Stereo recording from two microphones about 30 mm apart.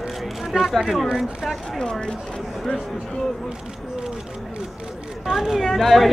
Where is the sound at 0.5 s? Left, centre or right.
Right.